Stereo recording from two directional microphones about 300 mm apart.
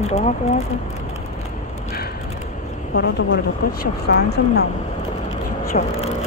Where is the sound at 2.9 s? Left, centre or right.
Left.